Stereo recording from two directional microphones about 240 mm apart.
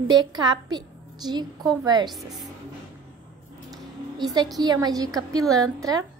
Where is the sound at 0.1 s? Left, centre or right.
Centre.